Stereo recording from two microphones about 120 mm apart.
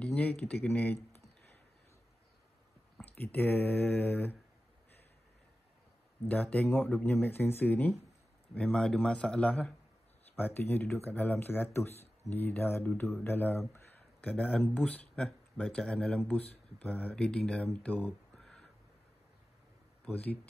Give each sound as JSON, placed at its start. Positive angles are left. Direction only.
{"t": 0.0, "sound": "speech", "side_deg": 10}
{"t": 3.2, "sound": "speech", "side_deg": 15}
{"t": 6.2, "sound": "speech", "side_deg": 15}
{"t": 11.9, "sound": "a sound", "side_deg": 65}
{"t": 12.4, "sound": "a man's voice", "side_deg": 15}
{"t": 20.1, "sound": "speech", "side_deg": 15}